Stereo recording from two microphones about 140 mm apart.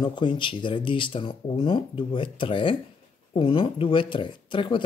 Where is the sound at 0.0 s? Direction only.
35° left (ahead or behind).